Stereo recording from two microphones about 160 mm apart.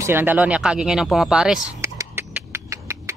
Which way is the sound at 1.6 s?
15° right (ahead or behind).